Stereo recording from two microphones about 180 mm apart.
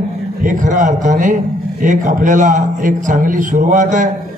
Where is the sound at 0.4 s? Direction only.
45° right (ahead or behind).